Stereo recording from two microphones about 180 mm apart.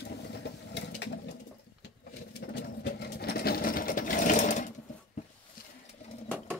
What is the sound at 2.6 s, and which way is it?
Sewing machine, 65° left (ahead or behind).